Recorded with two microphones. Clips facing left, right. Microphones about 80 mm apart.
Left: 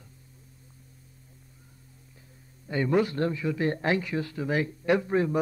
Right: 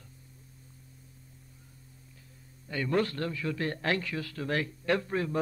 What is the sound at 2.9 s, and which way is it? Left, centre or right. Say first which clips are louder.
Speech: left 3 dB; centre.